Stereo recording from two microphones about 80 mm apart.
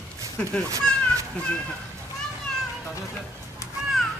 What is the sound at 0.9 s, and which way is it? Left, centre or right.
Children playing, centre.